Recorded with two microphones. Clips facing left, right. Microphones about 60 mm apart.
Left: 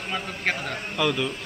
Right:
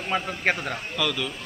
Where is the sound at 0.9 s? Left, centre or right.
Centre.